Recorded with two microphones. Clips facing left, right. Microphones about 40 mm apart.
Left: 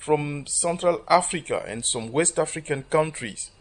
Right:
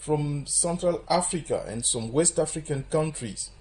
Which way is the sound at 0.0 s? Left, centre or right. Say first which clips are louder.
Left 4 dB; left.